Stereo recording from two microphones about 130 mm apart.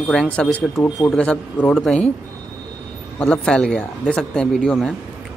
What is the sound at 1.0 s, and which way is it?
A man's voice, 10° left (ahead or behind).